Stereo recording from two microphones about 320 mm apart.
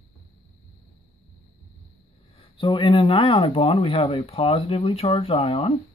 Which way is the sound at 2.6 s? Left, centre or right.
Centre.